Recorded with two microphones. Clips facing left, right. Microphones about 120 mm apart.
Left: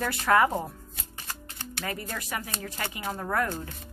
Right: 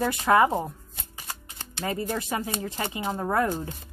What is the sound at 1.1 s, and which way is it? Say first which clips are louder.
Music: right 1 dB; 15° right (ahead or behind).